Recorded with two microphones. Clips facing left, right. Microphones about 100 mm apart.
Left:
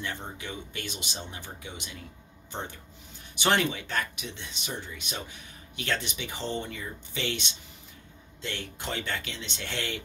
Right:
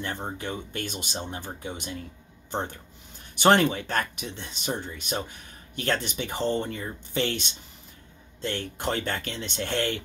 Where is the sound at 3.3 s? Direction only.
45° right (ahead or behind).